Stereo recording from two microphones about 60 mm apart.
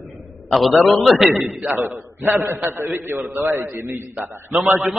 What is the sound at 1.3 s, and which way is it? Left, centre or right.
A man's voice, right.